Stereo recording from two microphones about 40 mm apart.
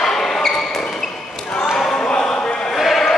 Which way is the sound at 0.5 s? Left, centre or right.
Left.